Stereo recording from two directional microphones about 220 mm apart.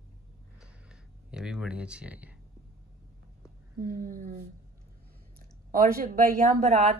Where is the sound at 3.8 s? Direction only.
35° right (ahead or behind).